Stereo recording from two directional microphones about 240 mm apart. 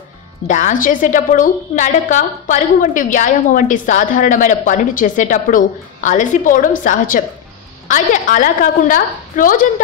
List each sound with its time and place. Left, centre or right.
0.5 s a woman's voice: left